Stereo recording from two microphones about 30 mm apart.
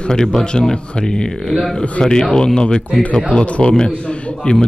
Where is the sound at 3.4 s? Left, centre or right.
Left.